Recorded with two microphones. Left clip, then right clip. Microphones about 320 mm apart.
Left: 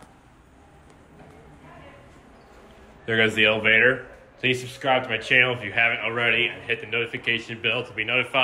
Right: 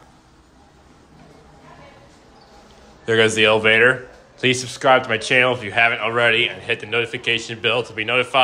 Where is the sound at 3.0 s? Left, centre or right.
Centre.